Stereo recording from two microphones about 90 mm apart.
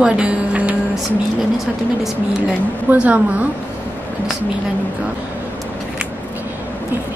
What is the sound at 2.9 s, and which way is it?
Music, 15° right (ahead or behind).